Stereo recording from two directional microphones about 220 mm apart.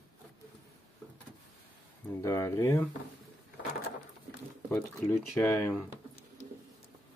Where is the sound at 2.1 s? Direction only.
10° left (ahead or behind).